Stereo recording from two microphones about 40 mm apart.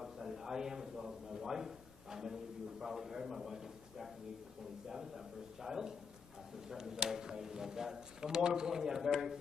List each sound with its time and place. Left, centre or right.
0.0 s a man's voice: centre